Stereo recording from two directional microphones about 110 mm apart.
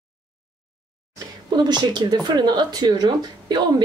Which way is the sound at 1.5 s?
40° right (ahead or behind).